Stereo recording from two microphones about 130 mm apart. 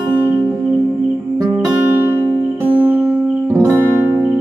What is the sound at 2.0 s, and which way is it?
Music, 15° right (ahead or behind).